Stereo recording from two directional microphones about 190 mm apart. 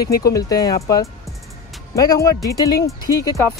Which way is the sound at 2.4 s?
20° left (ahead or behind).